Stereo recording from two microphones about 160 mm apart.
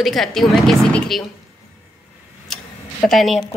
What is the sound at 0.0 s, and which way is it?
Speech, centre (ahead or behind).